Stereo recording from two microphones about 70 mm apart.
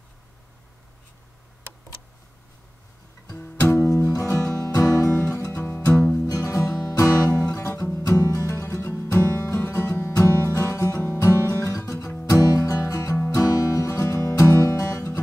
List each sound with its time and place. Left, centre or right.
3.3 s guitar: left
4.1 s music: left
5.1 s guitar: left
5.6 s music: left
6.8 s music: left
8.1 s music: left
8.5 s music: left
13.1 s music: left
13.4 s music: left